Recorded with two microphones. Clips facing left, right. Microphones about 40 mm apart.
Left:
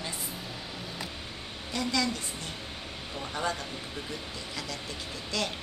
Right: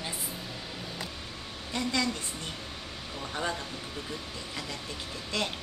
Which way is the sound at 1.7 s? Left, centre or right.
Right.